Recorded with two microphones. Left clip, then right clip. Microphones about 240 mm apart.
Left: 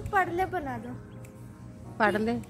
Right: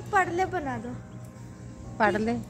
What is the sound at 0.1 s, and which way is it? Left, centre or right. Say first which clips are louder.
Speech: right 2 dB; centre.